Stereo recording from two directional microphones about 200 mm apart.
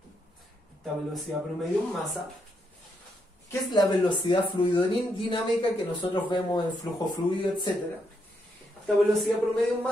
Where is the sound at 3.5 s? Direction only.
20° left (ahead or behind).